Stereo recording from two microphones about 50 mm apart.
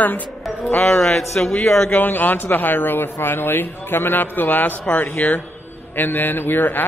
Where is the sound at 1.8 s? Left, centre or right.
Left.